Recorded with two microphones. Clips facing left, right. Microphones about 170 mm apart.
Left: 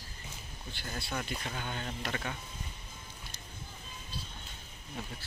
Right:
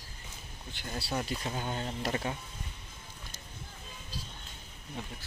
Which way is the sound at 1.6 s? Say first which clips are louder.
Right 3 dB; 30° right (ahead or behind).